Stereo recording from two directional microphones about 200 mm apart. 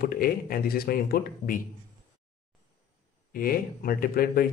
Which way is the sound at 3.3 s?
45° left (ahead or behind).